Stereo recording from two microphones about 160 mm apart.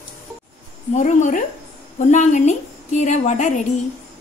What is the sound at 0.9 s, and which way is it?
A woman's voice, 50° left (ahead or behind).